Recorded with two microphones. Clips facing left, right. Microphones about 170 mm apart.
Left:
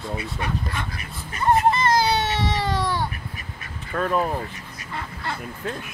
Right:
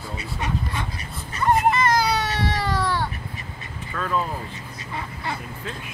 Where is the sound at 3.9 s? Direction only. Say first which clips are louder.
Left 3 dB; 50° left (ahead or behind).